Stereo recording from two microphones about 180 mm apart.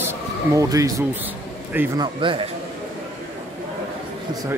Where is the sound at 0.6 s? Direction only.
20° right (ahead or behind).